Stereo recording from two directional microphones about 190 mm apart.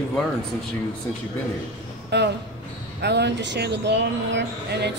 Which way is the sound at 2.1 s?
60° right (ahead or behind).